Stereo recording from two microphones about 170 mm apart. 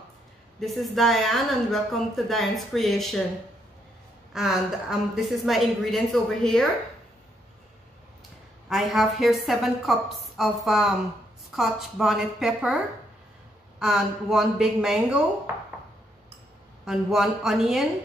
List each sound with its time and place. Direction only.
0.6 s speech: centre (ahead or behind)
4.3 s speech: 5° right (ahead or behind)
8.6 s speech: centre (ahead or behind)
16.8 s speech: centre (ahead or behind)